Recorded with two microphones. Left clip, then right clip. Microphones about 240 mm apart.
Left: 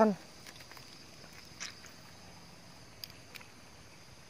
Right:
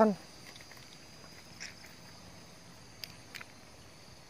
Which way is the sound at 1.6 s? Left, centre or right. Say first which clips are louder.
Left 2 dB; left.